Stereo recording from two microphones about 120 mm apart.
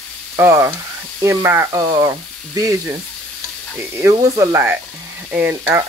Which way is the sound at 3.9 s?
25° right (ahead or behind).